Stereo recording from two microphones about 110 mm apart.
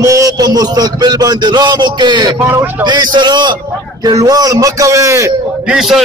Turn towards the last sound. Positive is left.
turn(degrees=-5)  # may be behind; listen again after turning